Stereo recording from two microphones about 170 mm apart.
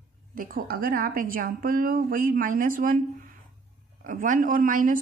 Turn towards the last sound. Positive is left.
turn(degrees=-55)  # may be behind; listen again after turning